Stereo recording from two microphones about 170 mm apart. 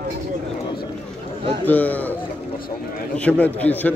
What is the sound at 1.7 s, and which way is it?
Speech, 10° left (ahead or behind).